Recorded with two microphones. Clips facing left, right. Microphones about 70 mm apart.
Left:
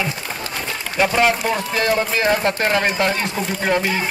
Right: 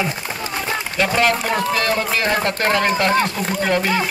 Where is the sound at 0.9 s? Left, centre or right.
Centre.